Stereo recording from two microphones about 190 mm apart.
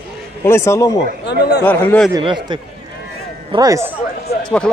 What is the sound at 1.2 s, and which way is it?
Speech, 60° left (ahead or behind).